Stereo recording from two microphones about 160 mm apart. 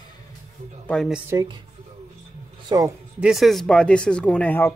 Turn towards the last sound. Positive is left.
turn(degrees=10)  # may be behind; listen again after turning